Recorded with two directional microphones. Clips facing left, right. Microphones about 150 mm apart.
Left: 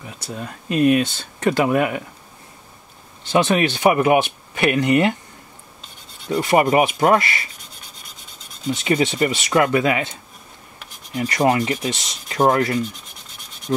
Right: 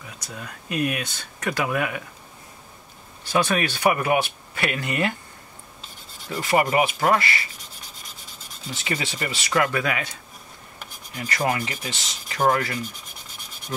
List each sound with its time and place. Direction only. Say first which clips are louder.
0.2 s speech: left 8 dB; 30° left (ahead or behind)
3.3 s speech: left 5 dB; 25° left (ahead or behind)
6.3 s speech: left 5 dB; 20° left (ahead or behind)
8.8 s speech: left 10 dB; 25° left (ahead or behind)
11.2 s speech: left 7 dB; 25° left (ahead or behind)
13.7 s rub: left 9 dB; 35° left (ahead or behind)